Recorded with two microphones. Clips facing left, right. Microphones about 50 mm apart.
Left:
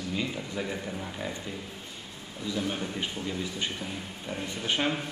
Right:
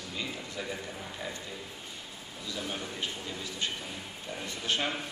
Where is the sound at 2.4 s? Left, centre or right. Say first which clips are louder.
Left 6 dB; centre.